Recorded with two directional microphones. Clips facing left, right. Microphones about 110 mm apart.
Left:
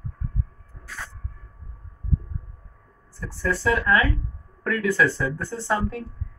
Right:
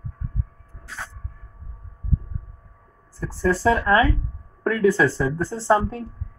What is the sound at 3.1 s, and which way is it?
Speech, 35° right (ahead or behind).